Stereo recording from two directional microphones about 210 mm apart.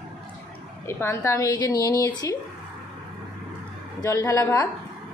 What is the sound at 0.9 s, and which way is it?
A woman's voice, 10° left (ahead or behind).